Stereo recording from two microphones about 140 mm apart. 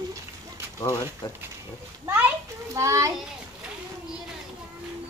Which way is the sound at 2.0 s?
15° right (ahead or behind).